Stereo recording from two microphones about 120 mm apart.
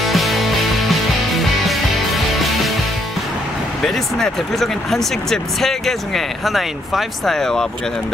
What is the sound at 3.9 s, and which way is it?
Speech, 5° left (ahead or behind).